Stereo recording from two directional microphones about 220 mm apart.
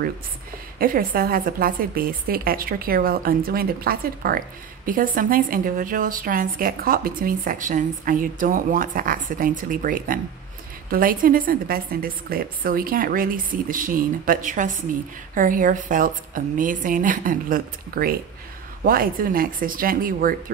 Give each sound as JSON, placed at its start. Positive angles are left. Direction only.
{"t": 0.7, "sound": "a woman's voice", "side_deg": -40}